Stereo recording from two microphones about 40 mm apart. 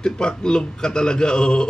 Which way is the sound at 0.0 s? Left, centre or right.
Left.